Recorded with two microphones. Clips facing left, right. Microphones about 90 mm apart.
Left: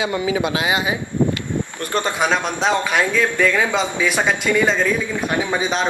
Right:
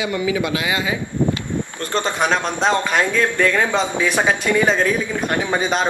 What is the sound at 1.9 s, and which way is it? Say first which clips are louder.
A man's voice: even; 5° left (ahead or behind).